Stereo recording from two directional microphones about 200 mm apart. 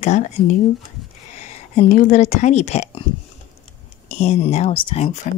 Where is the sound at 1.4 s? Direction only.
35° left (ahead or behind).